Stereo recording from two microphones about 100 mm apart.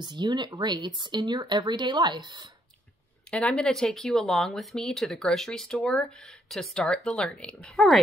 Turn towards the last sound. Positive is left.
turn(degrees=5)  # may be behind; listen again after turning